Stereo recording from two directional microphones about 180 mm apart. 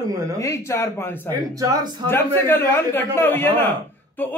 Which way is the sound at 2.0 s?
10° left (ahead or behind).